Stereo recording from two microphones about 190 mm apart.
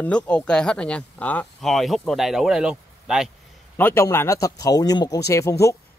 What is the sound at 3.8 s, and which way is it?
Speech, 10° left (ahead or behind).